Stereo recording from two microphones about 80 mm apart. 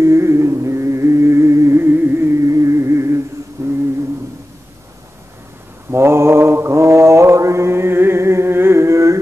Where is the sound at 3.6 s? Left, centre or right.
Right.